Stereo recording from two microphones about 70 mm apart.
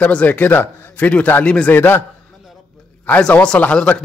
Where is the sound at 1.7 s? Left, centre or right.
Left.